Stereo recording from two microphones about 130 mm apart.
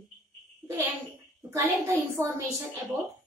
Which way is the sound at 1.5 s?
20° right (ahead or behind).